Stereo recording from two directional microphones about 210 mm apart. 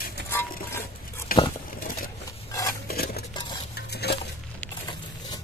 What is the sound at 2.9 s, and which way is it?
Stir, 45° left (ahead or behind).